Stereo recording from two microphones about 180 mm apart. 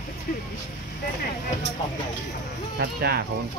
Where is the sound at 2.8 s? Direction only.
60° right (ahead or behind).